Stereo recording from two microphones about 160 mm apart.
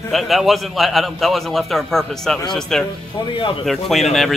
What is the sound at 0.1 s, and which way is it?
A man's voice, centre (ahead or behind).